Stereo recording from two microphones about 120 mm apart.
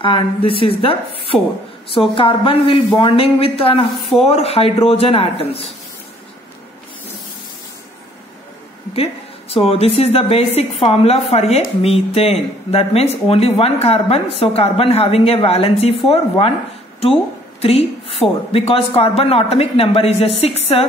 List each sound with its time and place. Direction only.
0.0 s a woman's voice: 45° left (ahead or behind)
8.9 s speech: 55° left (ahead or behind)